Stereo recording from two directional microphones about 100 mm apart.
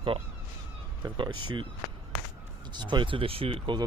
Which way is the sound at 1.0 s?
50° right (ahead or behind).